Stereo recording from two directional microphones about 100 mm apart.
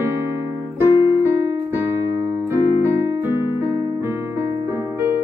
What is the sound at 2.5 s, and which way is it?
Keyboard, 20° right (ahead or behind).